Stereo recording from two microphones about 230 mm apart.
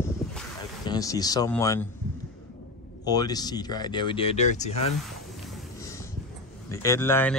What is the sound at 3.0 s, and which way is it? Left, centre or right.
Speech, centre.